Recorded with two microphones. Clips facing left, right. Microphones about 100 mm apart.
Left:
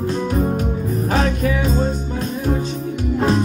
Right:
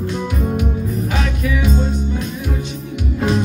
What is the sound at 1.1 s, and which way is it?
Music, 35° left (ahead or behind).